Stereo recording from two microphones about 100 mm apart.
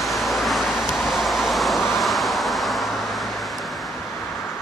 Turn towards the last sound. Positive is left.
turn(degrees=0)  # may be behind; listen again after turning